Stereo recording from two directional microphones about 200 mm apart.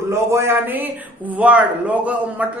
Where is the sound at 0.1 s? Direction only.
15° right (ahead or behind).